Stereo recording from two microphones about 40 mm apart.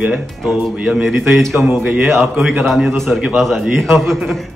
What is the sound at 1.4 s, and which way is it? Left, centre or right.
A man's voice, centre.